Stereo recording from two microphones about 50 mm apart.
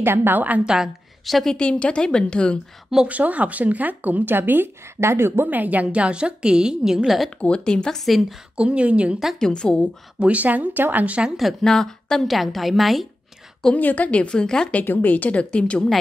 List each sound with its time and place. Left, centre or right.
0.0 s a woman's voice: right
1.2 s a woman's voice: centre
1.5 s a woman's voice: left
3.1 s speech: right
5.0 s a woman's voice: right
5.5 s a woman's voice: right; by 7.2 s centre
7.2 s speech: left
8.0 s a woman's voice: centre
8.5 s a woman's voice: right
9.4 s speech: centre
10.2 s speech: right
11.6 s a woman's voice: centre
13.7 s a woman's voice: left; by 14.7 s centre
14.9 s a woman's voice: left